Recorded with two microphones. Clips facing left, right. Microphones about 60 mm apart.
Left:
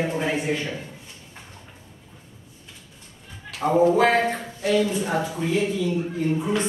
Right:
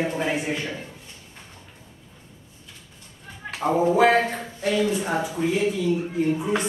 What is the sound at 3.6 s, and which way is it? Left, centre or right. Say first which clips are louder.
Speech: left 1 dB; centre.